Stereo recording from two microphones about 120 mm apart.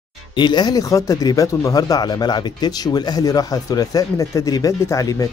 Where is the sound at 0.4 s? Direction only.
35° left (ahead or behind).